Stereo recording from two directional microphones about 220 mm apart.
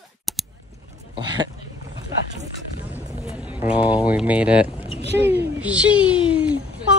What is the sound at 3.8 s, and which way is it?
A child's voice, 5° right (ahead or behind).